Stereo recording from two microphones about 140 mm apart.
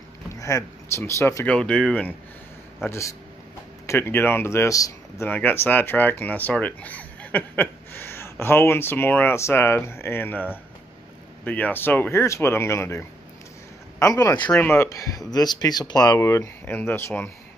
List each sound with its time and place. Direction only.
0.3 s speech: 20° left (ahead or behind); by 2.1 s 5° left (ahead or behind)
2.8 s speech: 20° left (ahead or behind)
14.5 s speech: 15° left (ahead or behind)